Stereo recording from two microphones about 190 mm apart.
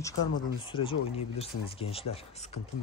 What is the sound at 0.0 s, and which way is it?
Speech, 25° left (ahead or behind).